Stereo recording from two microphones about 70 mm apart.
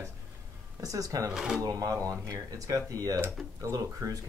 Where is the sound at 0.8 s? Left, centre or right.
Right.